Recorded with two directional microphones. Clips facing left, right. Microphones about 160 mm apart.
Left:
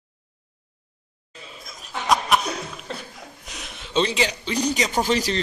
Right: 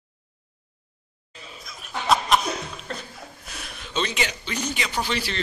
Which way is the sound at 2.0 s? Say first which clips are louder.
Even; 15° left (ahead or behind).